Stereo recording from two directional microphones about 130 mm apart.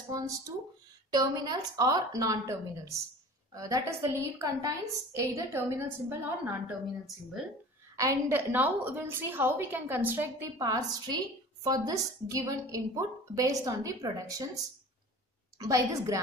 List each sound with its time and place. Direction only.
0.1 s a woman's voice: 25° right (ahead or behind)
8.0 s a woman's voice: 20° right (ahead or behind)
10.6 s a woman's voice: 30° right (ahead or behind)